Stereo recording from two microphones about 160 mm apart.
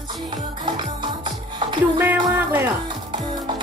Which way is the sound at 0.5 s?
30° right (ahead or behind).